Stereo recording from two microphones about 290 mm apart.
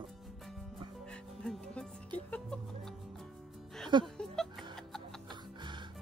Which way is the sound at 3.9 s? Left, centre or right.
Centre.